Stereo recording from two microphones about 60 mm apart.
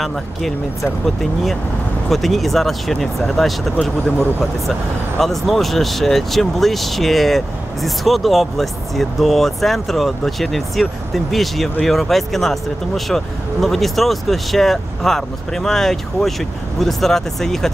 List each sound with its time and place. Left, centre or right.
0.0 s speech: centre
5.2 s speech: centre